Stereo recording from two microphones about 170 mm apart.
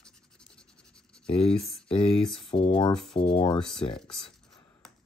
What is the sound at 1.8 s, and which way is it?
Speech, 30° left (ahead or behind).